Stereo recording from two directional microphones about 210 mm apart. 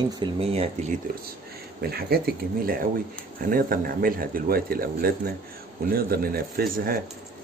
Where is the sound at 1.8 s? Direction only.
45° right (ahead or behind).